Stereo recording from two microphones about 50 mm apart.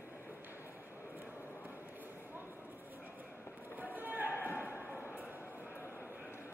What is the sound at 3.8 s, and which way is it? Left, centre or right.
Basketball bounce, right.